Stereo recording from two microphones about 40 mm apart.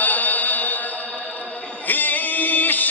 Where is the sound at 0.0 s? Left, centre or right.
Left.